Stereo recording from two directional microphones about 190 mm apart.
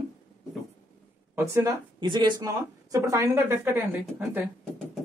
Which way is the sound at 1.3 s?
15° right (ahead or behind).